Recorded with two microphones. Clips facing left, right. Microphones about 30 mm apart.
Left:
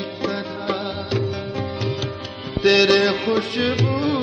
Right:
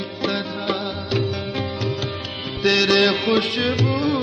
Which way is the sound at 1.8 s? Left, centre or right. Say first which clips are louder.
Even; centre.